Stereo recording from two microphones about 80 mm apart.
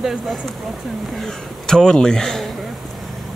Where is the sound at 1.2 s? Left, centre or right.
Centre.